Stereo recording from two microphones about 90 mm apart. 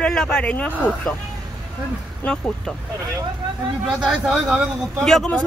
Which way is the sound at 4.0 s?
5° right (ahead or behind).